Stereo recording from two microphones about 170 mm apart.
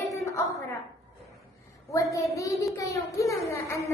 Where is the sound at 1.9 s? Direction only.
20° left (ahead or behind).